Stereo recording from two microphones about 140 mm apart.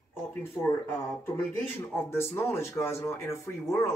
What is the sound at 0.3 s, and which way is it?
A man's voice, 20° left (ahead or behind).